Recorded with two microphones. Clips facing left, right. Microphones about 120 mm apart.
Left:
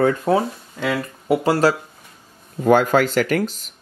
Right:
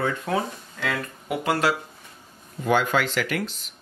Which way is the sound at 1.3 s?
35° left (ahead or behind).